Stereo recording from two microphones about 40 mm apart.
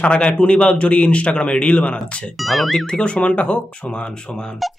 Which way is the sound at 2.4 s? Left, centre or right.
Centre.